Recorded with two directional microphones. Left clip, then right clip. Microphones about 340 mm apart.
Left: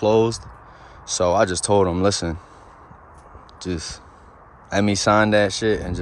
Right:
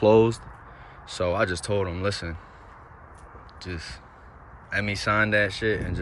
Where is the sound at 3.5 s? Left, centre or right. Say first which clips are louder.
Left 8 dB; centre.